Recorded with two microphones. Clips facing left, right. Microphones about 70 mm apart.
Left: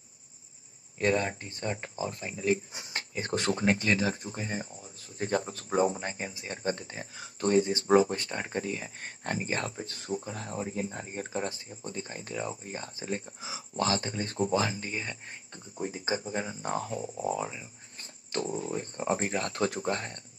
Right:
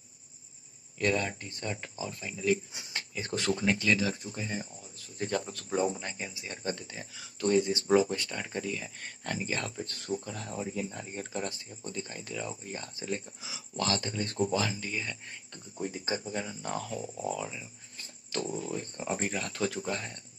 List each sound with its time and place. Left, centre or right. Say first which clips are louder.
0.9 s speech: left 2 dB; left